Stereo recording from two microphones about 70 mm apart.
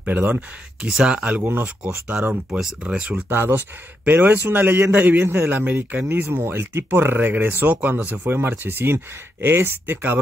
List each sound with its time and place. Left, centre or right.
0.0 s speech: right
0.8 s speech: centre
1.8 s speech: centre
3.3 s speech: right
6.0 s speech: right